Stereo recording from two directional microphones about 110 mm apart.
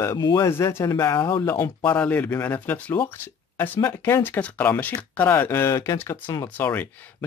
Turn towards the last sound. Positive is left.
turn(degrees=15)  # may be behind; listen again after turning